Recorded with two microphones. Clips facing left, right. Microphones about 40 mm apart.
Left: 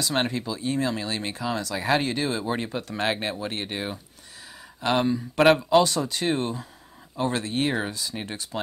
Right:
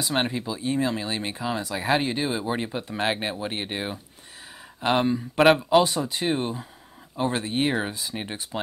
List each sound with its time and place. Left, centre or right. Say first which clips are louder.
0.1 s speech: right 2 dB; centre
5.4 s speech: even; centre